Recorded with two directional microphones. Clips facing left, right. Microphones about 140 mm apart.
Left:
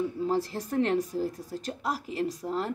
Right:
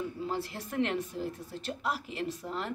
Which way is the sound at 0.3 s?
35° left (ahead or behind).